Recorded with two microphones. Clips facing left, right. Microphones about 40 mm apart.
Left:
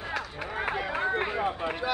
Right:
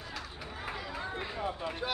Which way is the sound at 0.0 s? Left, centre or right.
Left.